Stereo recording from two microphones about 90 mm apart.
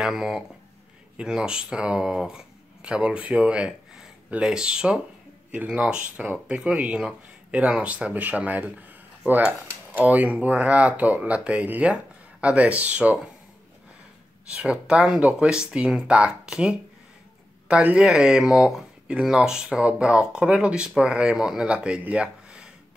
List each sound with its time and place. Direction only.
0.0 s speech: 5° right (ahead or behind)
14.5 s speech: 15° right (ahead or behind)